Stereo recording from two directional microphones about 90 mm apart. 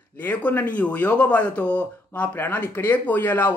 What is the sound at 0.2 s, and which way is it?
Speech, 20° left (ahead or behind).